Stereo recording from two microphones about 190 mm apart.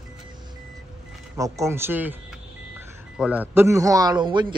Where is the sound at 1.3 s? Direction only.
15° right (ahead or behind).